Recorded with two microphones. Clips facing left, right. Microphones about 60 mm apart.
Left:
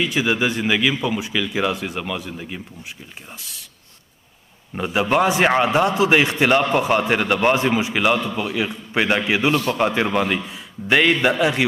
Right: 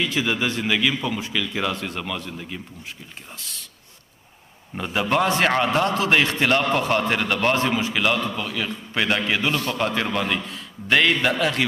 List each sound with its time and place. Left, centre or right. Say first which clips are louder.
0.0 s a man's voice: left 3 dB; centre
4.7 s a man's voice: left 3 dB; centre